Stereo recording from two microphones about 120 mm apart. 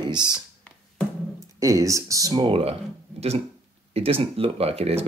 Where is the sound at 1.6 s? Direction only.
25° right (ahead or behind).